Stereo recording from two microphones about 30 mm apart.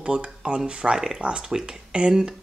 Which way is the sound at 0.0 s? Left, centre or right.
Right.